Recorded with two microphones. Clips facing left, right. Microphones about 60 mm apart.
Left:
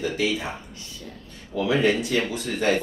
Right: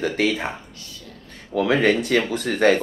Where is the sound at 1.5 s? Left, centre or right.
Right.